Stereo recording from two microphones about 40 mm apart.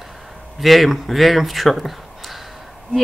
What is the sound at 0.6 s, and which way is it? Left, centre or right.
Speech, centre.